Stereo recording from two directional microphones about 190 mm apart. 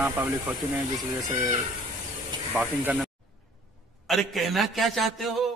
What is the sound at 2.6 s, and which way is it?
A man's voice, 5° right (ahead or behind).